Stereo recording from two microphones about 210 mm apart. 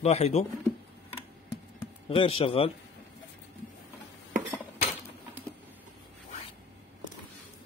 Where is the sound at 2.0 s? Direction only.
25° left (ahead or behind).